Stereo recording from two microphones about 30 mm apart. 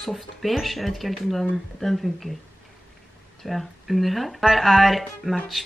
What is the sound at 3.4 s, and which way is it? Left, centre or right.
Speech, centre.